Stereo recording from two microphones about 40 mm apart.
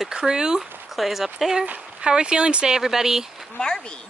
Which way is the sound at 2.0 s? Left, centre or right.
Right.